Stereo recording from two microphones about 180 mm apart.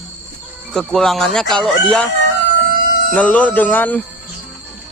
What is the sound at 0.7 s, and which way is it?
Speech, centre (ahead or behind).